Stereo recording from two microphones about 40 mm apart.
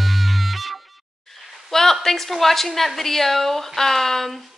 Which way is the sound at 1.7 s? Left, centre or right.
Centre.